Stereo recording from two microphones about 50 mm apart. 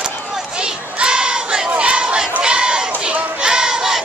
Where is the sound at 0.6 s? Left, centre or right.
Centre.